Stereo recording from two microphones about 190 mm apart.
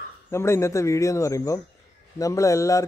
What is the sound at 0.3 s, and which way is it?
A man's voice, 15° left (ahead or behind).